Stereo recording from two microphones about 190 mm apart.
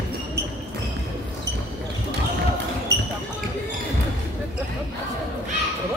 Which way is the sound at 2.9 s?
60° right (ahead or behind).